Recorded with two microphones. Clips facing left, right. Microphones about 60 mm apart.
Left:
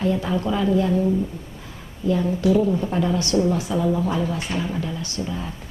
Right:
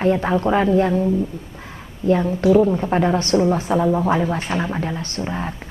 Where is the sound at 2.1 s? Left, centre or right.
Right.